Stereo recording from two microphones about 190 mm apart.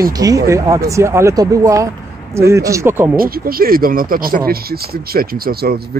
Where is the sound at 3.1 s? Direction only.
50° right (ahead or behind).